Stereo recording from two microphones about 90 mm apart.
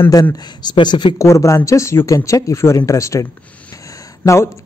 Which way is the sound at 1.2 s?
35° left (ahead or behind).